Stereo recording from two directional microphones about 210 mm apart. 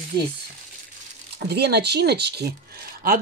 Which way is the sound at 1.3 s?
50° right (ahead or behind).